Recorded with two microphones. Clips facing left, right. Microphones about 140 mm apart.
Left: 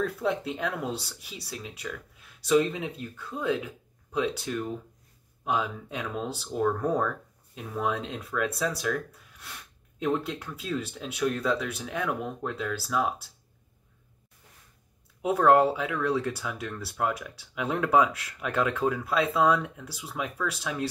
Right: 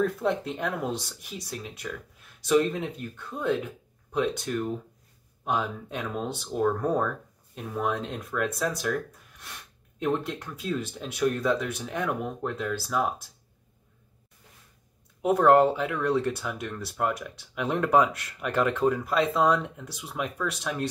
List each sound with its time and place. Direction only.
0.0 s speech: centre (ahead or behind)
12.2 s speech: 15° right (ahead or behind)
12.4 s speech: centre (ahead or behind)
15.2 s speech: centre (ahead or behind)